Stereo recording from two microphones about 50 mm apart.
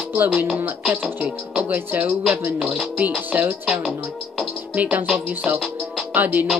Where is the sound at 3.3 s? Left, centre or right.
Right.